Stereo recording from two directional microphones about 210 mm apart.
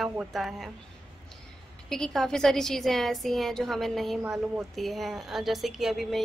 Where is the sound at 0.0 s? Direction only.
Centre (ahead or behind).